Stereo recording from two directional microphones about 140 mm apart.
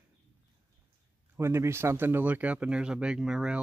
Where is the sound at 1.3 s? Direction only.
20° right (ahead or behind).